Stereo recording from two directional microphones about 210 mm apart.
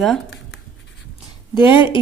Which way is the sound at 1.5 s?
20° left (ahead or behind).